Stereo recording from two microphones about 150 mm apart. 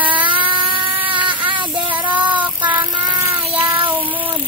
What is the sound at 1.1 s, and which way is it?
Child singing, 35° right (ahead or behind).